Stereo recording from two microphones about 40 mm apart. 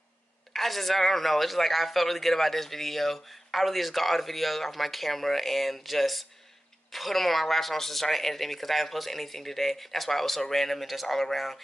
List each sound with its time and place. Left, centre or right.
0.5 s speech: centre